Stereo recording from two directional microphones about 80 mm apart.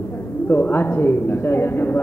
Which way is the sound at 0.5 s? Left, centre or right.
Left.